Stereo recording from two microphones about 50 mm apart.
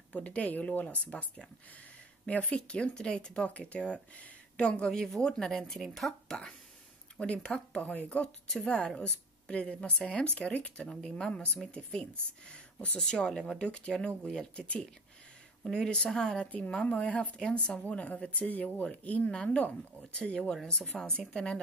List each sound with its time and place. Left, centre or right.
0.1 s speech: left
3.4 s speech: left
5.0 s speech: centre
7.2 s speech: centre
13.7 s speech: left
15.6 s speech: centre
16.8 s speech: left